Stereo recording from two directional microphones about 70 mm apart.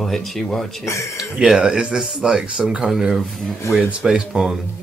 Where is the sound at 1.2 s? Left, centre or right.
Centre.